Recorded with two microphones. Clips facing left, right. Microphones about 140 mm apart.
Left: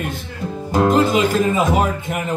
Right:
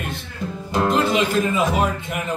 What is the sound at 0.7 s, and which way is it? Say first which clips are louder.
Speech: left 4 dB; 40° left (ahead or behind).